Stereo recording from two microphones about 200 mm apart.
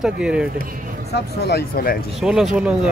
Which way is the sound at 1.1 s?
55° left (ahead or behind).